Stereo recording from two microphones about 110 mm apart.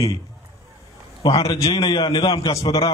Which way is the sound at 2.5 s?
65° left (ahead or behind).